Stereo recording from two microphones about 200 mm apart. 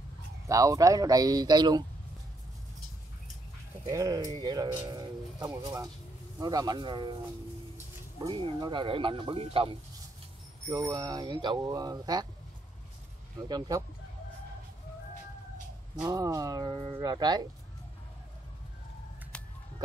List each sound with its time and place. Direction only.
0.5 s speech: 15° right (ahead or behind)
3.8 s speech: 15° right (ahead or behind)
8.2 s speech: 25° right (ahead or behind)
13.5 s speech: 20° right (ahead or behind)
16.0 s speech: 15° right (ahead or behind)
19.3 s a sound: 5° left (ahead or behind)